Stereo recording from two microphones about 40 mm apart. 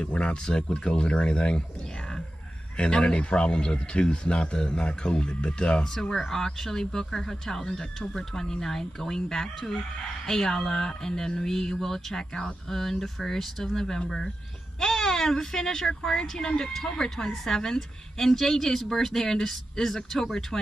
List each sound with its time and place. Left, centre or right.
0.0 s speech: left
2.8 s speech: left